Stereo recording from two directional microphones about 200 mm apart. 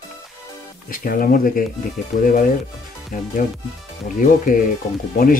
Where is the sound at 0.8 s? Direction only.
45° left (ahead or behind).